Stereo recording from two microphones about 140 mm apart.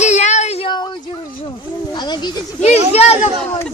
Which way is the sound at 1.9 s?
30° left (ahead or behind).